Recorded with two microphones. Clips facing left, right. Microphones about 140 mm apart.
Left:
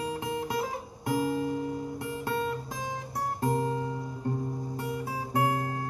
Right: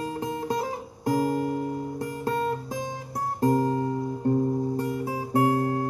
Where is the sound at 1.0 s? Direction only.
45° right (ahead or behind).